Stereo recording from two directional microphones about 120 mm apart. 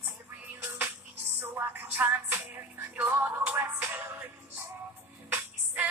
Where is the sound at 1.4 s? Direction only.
20° right (ahead or behind).